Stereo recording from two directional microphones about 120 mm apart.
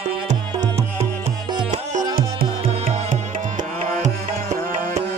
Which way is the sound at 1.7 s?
90° right.